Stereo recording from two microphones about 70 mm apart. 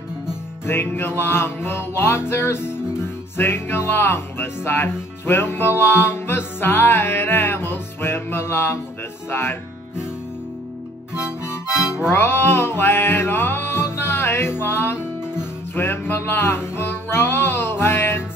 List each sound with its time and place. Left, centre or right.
0.7 s music: left
11.8 s music: centre
12.1 s music: left